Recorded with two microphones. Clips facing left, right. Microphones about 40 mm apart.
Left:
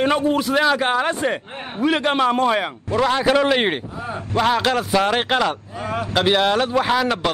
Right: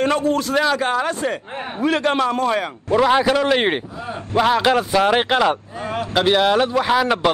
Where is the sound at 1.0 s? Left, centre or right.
Left.